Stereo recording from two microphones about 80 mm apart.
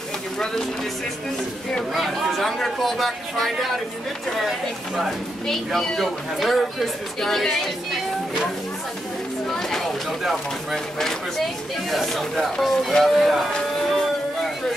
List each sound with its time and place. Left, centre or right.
1.7 s speech: centre
9.5 s speech: centre
13.5 s a sound: centre